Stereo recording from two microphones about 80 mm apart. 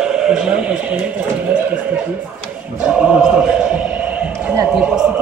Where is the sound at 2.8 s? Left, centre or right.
Centre.